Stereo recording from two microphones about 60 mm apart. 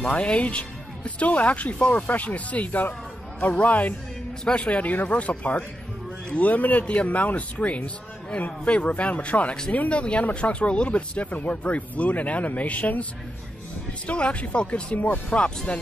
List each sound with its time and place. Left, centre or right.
0.0 s speech: centre
14.0 s speech: centre